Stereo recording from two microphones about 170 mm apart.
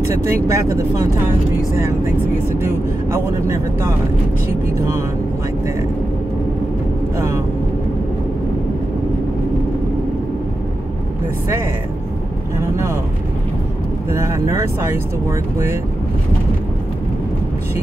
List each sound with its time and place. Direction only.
0.1 s speech: 20° right (ahead or behind)
2.6 s speech: 15° right (ahead or behind)
14.1 s speech: 15° right (ahead or behind)